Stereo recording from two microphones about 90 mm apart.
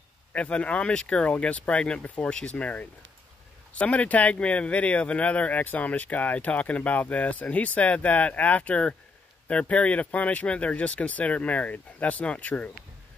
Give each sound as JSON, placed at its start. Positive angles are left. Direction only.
{"t": 0.3, "sound": "speech", "side_deg": 15}